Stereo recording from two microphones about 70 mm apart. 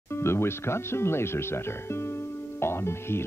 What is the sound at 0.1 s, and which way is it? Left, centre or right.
Speech, left.